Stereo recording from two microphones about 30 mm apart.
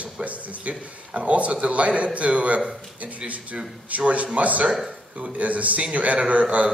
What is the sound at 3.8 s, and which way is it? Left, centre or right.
A man's voice, right.